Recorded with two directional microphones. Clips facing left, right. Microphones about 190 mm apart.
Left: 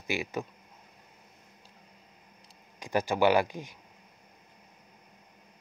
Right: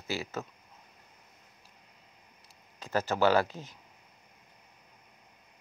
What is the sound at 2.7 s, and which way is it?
Speech, 15° left (ahead or behind).